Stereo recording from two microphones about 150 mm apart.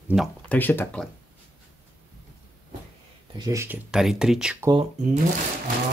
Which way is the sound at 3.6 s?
10° right (ahead or behind).